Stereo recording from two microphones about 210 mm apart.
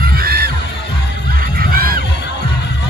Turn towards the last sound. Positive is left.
turn(degrees=-45)  # may be behind; listen again after turning